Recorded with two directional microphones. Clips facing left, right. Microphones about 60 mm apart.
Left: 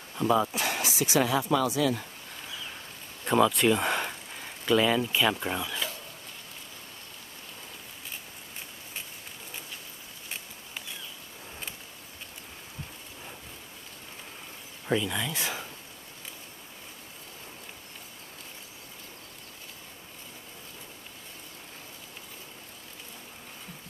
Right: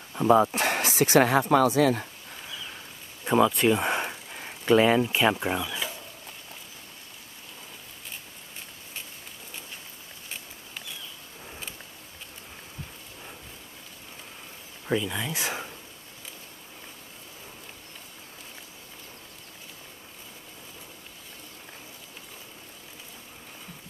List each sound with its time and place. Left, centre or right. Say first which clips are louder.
0.1 s speech: right 5 dB; right
3.3 s a sound: right 1 dB; centre
4.6 s speech: right 4 dB; right
5.3 s speech: right 3 dB; centre
14.9 s speech: even; centre